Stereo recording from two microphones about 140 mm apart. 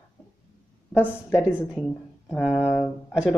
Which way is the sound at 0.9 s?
15° left (ahead or behind).